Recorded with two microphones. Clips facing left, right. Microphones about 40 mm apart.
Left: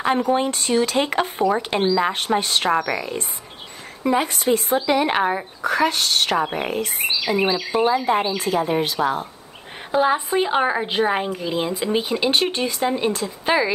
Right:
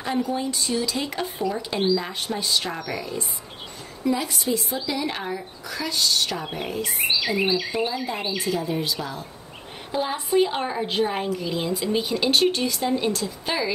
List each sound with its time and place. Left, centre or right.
0.0 s a woman's voice: left
9.9 s speech: centre